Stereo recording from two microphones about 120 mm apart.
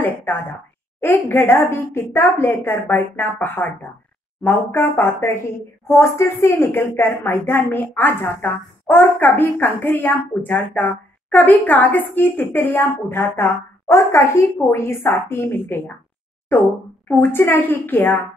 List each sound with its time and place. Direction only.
0.0 s a woman's voice: 15° left (ahead or behind)
17.1 s a woman's voice: 15° left (ahead or behind)